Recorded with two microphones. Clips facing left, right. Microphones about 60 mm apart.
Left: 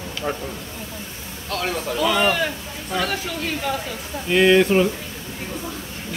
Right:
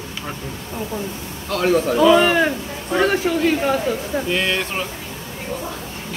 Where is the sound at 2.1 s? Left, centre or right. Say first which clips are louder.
Right 5 dB; right.